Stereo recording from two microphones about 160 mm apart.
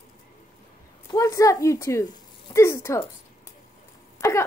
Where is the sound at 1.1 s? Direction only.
20° left (ahead or behind).